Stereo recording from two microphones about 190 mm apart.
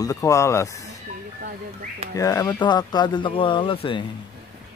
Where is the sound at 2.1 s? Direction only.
15° left (ahead or behind).